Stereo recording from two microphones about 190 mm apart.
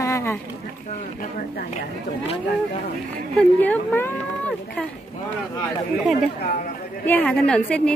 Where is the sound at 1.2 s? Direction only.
45° left (ahead or behind).